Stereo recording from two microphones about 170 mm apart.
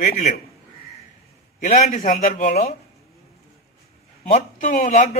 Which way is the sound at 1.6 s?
50° left (ahead or behind).